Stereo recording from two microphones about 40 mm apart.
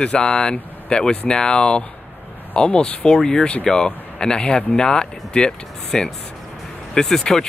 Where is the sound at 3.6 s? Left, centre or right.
Centre.